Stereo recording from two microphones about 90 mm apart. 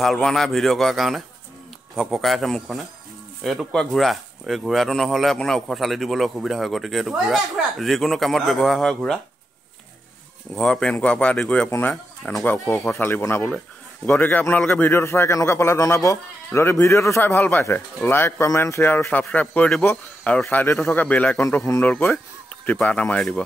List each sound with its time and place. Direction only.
0.0 s speech: centre (ahead or behind)
10.5 s speech: 5° left (ahead or behind)
12.4 s a man's voice: 25° left (ahead or behind)
17.2 s speech: 20° left (ahead or behind)
19.4 s speech: 10° left (ahead or behind)